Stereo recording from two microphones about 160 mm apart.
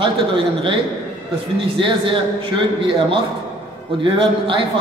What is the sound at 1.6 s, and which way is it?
Speech, 30° right (ahead or behind).